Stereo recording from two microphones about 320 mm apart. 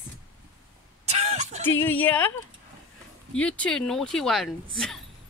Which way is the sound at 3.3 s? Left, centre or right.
Centre.